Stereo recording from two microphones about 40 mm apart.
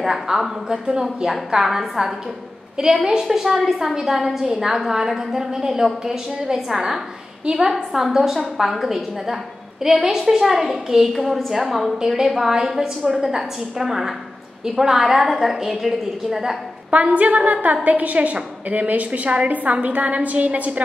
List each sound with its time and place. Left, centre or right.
0.0 s a woman's voice: centre
16.9 s a woman's voice: right